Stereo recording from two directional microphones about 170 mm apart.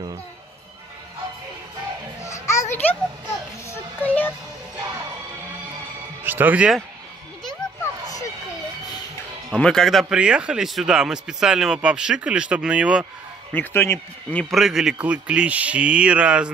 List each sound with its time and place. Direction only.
2.2 s children playing: 20° left (ahead or behind)
2.7 s a sound: 10° left (ahead or behind)
3.7 s music: 10° left (ahead or behind)
6.2 s speech: 10° right (ahead or behind)
9.5 s speech: 5° left (ahead or behind)
13.5 s speech: 10° left (ahead or behind)
14.5 s speech: centre (ahead or behind)